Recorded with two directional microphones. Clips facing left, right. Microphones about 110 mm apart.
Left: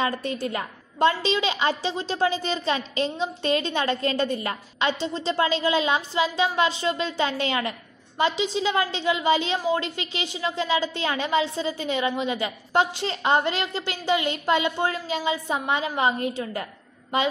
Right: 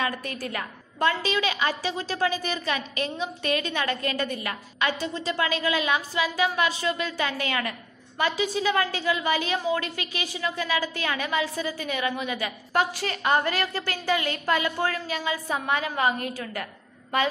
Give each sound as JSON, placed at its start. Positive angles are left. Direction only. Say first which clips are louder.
{"t": 0.0, "sound": "a woman's voice", "louder": "left 4 dB", "side_deg": 25}